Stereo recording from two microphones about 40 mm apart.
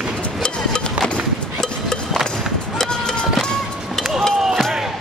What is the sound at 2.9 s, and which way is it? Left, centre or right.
Music, centre.